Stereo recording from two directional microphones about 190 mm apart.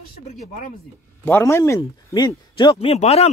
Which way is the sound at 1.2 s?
15° left (ahead or behind).